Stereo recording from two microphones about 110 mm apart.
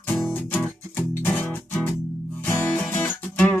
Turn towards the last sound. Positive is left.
turn(degrees=10)  # may be behind; listen again after turning